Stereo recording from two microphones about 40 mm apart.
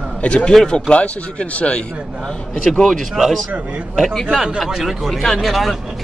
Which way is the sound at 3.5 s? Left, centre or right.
Right.